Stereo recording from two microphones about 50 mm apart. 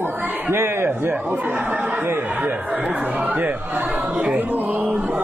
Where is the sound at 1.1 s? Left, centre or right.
Right.